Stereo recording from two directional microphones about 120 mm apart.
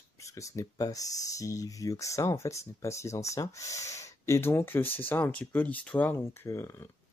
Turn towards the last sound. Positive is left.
turn(degrees=20)  # may be behind; listen again after turning